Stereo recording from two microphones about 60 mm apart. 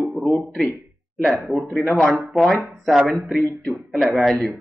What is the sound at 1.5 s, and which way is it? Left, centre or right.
Speech, centre.